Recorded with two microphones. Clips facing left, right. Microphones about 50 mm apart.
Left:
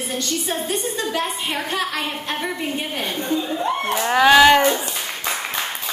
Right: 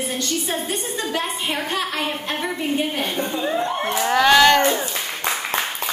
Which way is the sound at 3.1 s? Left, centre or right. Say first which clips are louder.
Left 2 dB; right.